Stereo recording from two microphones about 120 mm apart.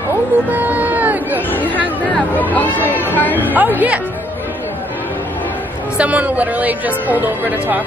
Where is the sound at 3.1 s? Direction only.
15° left (ahead or behind).